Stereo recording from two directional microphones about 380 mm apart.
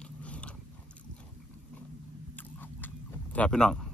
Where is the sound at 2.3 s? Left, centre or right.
Centre.